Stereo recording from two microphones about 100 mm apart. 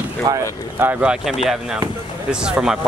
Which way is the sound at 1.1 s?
5° right (ahead or behind).